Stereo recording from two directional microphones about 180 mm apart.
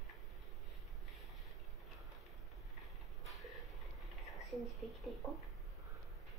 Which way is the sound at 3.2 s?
Centre (ahead or behind).